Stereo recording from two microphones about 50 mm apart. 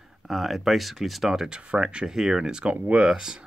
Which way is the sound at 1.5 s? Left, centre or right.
Centre.